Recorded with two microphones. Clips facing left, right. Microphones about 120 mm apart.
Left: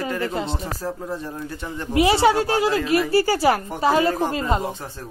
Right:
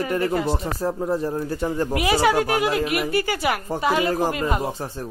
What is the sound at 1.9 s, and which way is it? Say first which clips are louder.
A woman's voice: left 4 dB; 25° left (ahead or behind).